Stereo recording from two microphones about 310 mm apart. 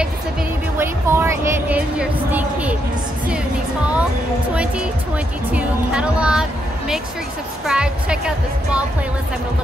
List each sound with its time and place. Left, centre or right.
0.7 s music: centre
5.5 s speech: centre
7.6 s speech: centre